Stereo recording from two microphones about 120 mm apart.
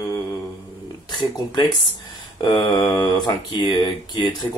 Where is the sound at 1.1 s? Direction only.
40° left (ahead or behind).